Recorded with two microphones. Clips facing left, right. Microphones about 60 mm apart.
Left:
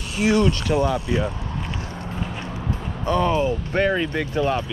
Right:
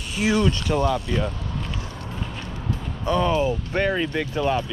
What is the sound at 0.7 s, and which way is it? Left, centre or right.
Speech, left.